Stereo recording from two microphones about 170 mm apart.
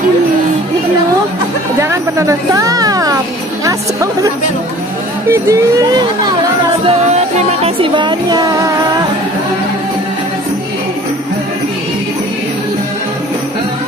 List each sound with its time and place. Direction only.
1.8 s a woman's voice: 15° right (ahead or behind)
5.3 s speech: 20° right (ahead or behind)
6.9 s music: 35° right (ahead or behind)